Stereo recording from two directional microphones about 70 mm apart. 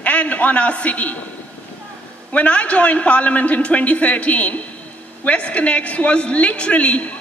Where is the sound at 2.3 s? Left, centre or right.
Centre.